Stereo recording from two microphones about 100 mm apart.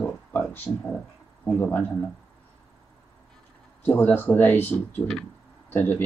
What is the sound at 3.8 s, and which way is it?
Speech, 20° left (ahead or behind).